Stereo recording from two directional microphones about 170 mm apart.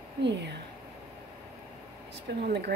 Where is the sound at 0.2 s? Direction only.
90° right.